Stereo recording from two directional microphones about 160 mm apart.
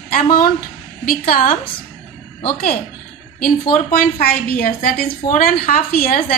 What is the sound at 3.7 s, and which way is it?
A woman's voice, 60° left (ahead or behind).